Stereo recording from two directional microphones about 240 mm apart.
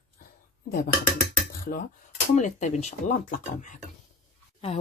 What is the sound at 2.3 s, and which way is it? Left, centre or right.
Speech, left.